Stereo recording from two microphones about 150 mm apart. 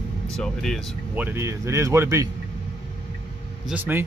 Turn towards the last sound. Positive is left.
turn(degrees=-15)  # may be behind; listen again after turning